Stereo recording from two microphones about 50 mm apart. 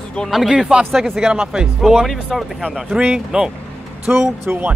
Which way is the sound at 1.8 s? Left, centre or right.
Centre.